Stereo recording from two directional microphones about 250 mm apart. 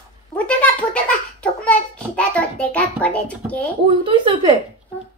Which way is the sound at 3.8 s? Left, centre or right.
Centre.